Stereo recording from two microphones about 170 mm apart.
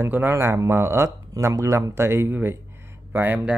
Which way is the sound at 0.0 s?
15° right (ahead or behind).